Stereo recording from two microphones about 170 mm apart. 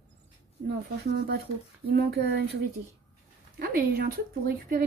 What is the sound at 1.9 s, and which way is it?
Speech, 75° right (ahead or behind).